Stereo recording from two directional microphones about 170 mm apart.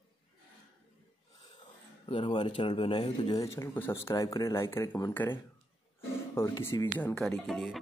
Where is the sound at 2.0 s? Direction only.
30° left (ahead or behind).